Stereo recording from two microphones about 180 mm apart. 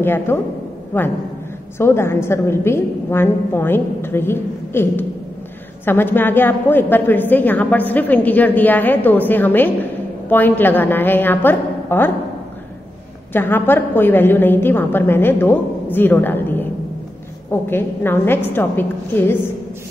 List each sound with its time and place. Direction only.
0.0 s a woman's voice: 10° left (ahead or behind)
13.3 s a woman's voice: 10° left (ahead or behind)